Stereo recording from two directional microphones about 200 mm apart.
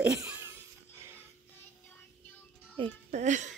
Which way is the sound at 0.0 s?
10° right (ahead or behind).